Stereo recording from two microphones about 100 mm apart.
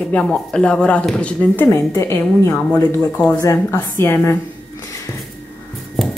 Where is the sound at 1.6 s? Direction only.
25° left (ahead or behind).